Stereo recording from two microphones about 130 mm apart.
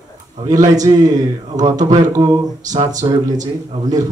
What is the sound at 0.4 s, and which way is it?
Speech, 30° right (ahead or behind).